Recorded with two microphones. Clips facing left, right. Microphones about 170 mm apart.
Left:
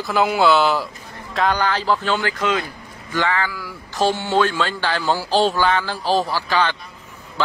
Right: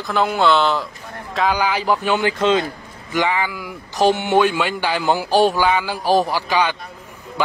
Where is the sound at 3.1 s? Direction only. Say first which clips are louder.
Right 2 dB; 15° right (ahead or behind).